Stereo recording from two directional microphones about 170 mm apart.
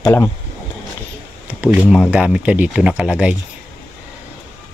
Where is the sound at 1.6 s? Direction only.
10° right (ahead or behind).